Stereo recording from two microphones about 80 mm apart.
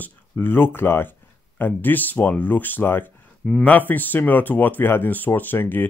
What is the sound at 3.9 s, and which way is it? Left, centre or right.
Speech, left.